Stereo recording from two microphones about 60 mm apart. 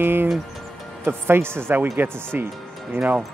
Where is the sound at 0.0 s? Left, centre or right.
Right.